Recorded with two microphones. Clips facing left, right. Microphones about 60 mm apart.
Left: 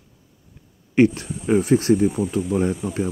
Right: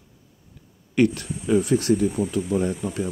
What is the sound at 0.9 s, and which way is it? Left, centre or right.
Speech, left.